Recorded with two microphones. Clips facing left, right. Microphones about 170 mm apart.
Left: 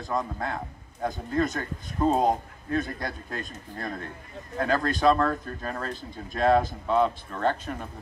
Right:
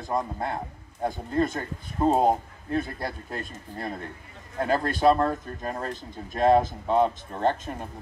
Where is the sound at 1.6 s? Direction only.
20° right (ahead or behind).